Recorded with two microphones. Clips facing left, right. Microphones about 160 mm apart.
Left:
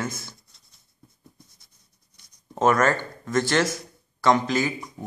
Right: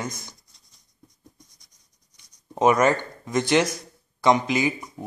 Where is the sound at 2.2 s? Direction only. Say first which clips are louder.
Right 2 dB; 15° right (ahead or behind).